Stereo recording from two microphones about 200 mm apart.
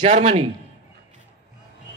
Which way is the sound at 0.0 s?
35° right (ahead or behind).